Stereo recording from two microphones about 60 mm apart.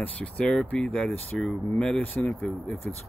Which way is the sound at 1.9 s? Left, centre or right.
Left.